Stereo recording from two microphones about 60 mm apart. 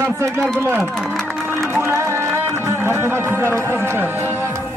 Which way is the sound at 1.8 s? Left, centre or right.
Right.